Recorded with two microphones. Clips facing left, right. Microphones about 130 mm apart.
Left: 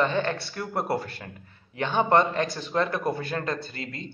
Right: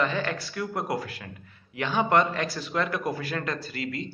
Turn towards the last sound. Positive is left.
turn(degrees=25)  # may be behind; listen again after turning